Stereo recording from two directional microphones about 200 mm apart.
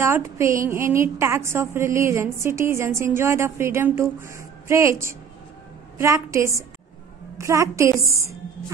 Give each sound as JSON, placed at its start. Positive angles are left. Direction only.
{"t": 0.0, "sound": "a woman's voice", "side_deg": -15}